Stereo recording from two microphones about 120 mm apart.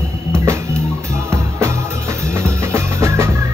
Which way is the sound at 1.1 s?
25° right (ahead or behind).